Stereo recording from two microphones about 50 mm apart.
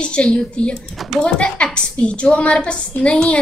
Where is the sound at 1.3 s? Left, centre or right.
Left.